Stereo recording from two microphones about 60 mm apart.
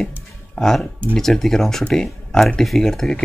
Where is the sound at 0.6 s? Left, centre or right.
Centre.